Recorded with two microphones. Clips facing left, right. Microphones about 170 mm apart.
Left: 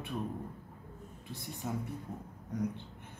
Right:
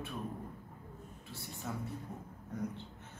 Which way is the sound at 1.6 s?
15° left (ahead or behind).